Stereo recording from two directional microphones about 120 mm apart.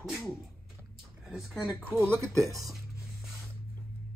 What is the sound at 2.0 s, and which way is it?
Speech, 20° right (ahead or behind).